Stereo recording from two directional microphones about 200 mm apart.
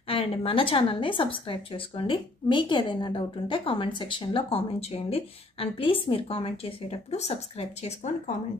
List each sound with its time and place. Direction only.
0.1 s a woman's voice: 25° left (ahead or behind)